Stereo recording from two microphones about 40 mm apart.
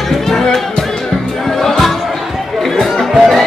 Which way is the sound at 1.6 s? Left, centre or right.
Centre.